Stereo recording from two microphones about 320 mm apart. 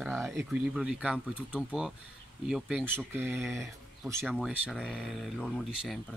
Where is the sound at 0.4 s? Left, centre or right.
Centre.